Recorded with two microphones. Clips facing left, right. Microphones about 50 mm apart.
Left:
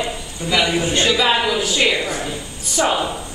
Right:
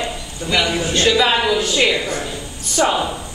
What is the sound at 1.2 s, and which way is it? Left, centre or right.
A woman's voice, centre.